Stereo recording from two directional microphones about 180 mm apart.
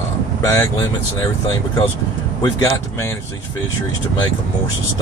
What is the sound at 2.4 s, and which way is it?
Speech, 20° left (ahead or behind).